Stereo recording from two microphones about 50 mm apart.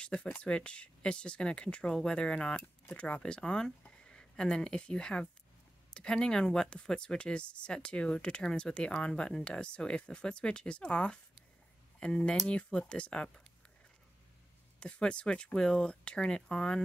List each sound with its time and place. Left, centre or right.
0.0 s speech: left
14.8 s speech: left